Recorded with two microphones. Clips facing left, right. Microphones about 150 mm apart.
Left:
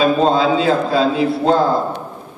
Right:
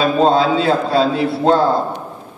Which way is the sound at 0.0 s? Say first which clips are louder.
Even; 30° right (ahead or behind).